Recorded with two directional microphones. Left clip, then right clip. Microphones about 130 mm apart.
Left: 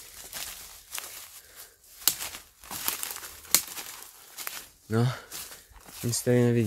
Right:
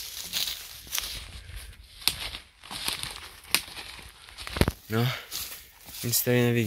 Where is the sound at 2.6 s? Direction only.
15° left (ahead or behind).